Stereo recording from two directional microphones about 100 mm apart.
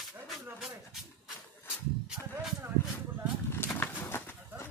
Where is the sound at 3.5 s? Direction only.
20° left (ahead or behind).